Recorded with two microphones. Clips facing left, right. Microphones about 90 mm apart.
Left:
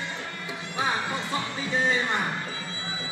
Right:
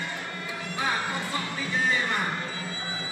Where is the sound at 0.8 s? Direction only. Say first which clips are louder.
Left 1 dB; 20° left (ahead or behind).